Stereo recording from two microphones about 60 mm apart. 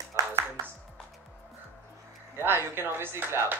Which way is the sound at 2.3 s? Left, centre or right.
Right.